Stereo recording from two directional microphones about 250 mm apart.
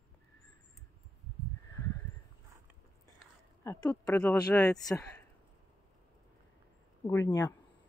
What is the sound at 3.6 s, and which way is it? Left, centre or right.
Speech, centre.